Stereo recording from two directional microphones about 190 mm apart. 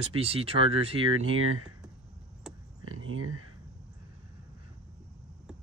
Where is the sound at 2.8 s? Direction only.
90° right.